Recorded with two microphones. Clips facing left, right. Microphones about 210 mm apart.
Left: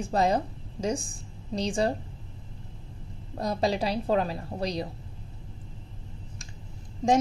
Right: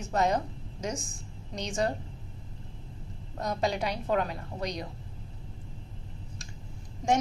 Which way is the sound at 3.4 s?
35° left (ahead or behind).